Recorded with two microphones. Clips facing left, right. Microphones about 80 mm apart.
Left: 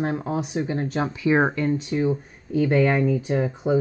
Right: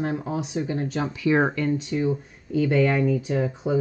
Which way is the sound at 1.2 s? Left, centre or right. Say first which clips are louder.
Left 1 dB; centre.